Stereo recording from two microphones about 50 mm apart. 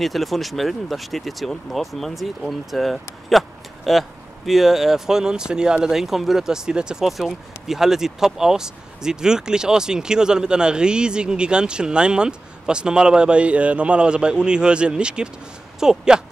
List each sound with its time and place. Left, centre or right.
0.0 s speech: centre
7.1 s speech: centre